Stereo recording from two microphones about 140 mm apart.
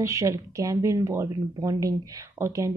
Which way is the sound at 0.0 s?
20° right (ahead or behind).